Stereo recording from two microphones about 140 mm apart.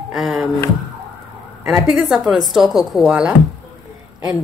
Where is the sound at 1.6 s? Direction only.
Centre (ahead or behind).